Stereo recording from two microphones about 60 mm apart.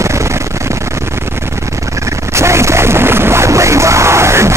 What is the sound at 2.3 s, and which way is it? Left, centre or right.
Music, right.